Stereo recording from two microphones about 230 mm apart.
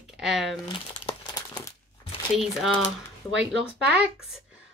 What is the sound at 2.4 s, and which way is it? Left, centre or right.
Speech, centre.